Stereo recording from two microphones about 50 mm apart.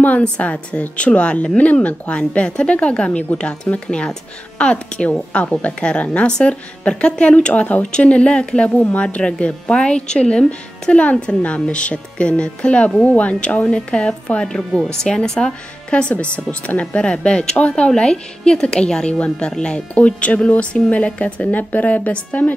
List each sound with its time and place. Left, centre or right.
0.2 s a woman's voice: left
13.7 s a woman's voice: centre
16.8 s a woman's voice: centre